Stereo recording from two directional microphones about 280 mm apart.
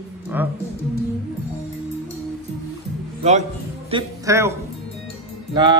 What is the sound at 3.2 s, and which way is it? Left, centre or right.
Speech, right.